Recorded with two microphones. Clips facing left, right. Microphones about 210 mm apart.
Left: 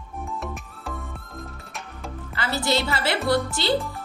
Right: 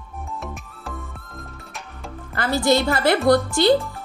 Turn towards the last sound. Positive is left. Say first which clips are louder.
# right 7 dB
turn(degrees=-45)  # may be behind; listen again after turning